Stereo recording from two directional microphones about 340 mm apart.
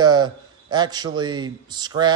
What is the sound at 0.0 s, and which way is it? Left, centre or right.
A man's voice, centre.